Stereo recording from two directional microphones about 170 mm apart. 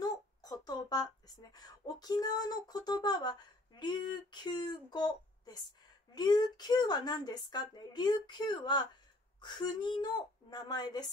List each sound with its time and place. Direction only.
0.0 s a woman's voice: 25° left (ahead or behind)